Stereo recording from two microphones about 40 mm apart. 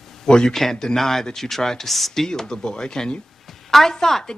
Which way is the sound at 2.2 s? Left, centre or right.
Centre.